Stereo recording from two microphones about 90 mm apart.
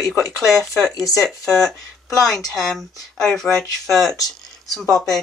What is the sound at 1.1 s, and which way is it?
Speech, centre (ahead or behind).